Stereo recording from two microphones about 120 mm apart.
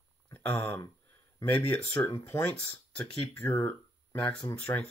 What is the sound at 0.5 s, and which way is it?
Speech, 10° left (ahead or behind).